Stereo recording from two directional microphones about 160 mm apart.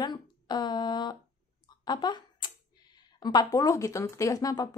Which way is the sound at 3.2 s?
25° left (ahead or behind).